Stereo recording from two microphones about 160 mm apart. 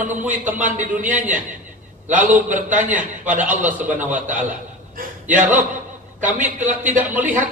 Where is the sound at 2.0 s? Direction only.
55° right (ahead or behind).